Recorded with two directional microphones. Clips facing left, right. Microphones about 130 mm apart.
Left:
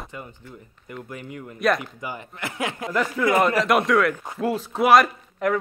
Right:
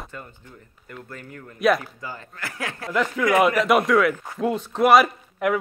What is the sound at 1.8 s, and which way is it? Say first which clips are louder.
Speech: left 3 dB; 15° left (ahead or behind).